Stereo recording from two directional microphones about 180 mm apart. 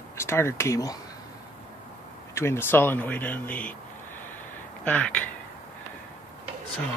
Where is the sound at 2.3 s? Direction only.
15° left (ahead or behind).